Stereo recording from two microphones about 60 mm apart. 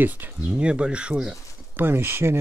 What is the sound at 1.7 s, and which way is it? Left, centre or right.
Speech, right.